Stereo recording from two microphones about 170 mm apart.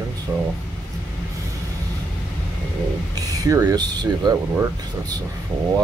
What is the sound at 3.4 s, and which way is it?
Speech, 20° right (ahead or behind).